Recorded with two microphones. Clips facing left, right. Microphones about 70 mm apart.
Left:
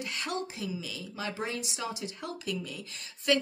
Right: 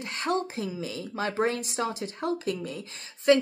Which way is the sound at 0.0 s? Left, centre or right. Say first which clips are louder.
Right 6 dB; right.